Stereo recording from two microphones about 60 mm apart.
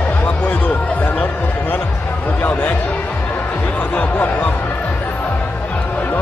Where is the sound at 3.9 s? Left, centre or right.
Left.